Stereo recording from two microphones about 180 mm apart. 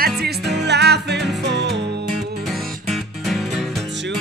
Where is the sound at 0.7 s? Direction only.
65° right (ahead or behind).